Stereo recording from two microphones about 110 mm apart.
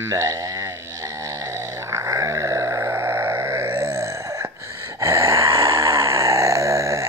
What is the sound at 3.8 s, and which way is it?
Grunt, 30° right (ahead or behind).